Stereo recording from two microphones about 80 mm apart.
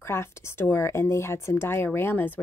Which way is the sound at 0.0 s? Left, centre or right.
Left.